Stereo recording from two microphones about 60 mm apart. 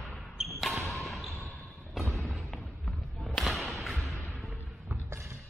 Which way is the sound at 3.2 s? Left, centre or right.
Centre.